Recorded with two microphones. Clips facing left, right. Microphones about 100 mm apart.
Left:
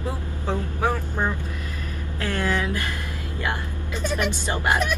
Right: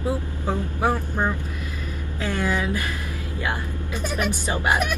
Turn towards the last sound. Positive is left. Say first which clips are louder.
# even
turn(degrees=-15)  # may be behind; listen again after turning